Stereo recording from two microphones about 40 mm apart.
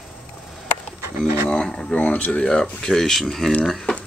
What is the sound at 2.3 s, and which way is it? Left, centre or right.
Speech, left.